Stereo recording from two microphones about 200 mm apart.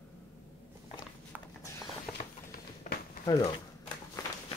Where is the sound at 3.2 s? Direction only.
25° left (ahead or behind).